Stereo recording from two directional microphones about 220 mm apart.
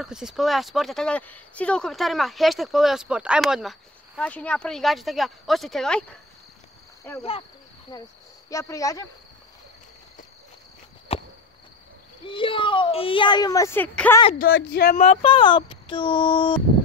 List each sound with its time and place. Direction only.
0.0 s speech: centre (ahead or behind)
7.1 s speech: 10° left (ahead or behind)
11.1 s a sound: 25° left (ahead or behind)
12.3 s a woman's voice: 25° left (ahead or behind)
14.4 s speech: 45° left (ahead or behind)
15.0 s a woman's voice: 25° left (ahead or behind)